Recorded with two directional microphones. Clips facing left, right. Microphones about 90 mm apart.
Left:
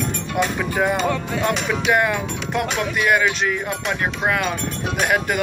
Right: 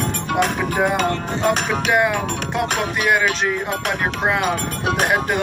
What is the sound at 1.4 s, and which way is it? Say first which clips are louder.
Music: right 2 dB; 50° right (ahead or behind).